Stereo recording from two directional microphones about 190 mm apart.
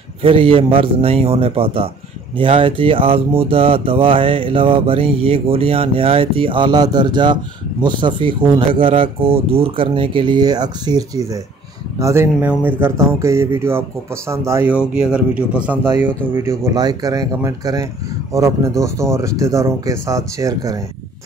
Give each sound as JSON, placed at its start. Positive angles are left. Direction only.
{"t": 0.2, "sound": "speech", "side_deg": -30}